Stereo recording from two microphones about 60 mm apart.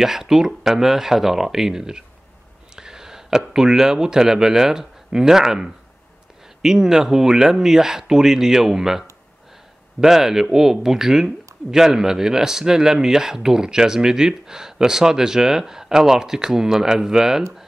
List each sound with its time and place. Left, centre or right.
0.0 s speech: centre